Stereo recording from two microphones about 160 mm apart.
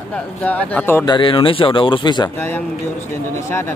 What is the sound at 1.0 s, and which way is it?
Speech, 30° left (ahead or behind).